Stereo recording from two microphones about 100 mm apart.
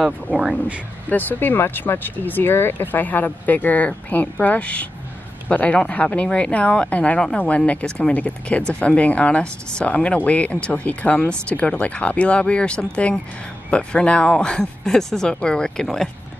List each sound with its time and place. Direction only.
0.3 s speech: 10° right (ahead or behind)
1.1 s speech: 20° left (ahead or behind)